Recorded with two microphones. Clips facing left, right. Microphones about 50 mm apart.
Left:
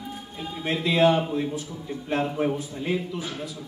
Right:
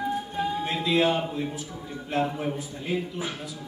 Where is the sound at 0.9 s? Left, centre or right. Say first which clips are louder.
Left 3 dB; left.